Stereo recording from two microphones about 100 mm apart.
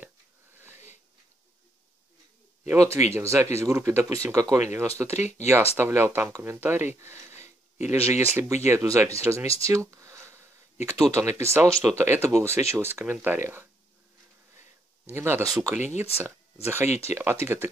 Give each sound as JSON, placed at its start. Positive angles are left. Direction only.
{"t": 2.7, "sound": "speech", "side_deg": -30}
{"t": 15.0, "sound": "speech", "side_deg": -25}